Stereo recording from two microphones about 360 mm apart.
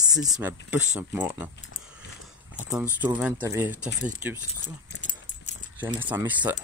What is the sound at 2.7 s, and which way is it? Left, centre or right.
Speech, centre.